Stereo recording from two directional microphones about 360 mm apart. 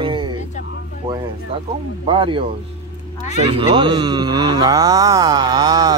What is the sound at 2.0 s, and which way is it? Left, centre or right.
Speech, centre.